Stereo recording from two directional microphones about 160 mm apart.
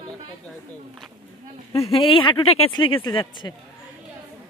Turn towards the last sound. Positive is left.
turn(degrees=30)  # may be behind; listen again after turning